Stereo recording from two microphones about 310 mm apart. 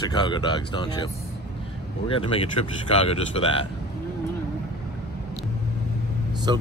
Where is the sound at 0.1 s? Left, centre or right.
Centre.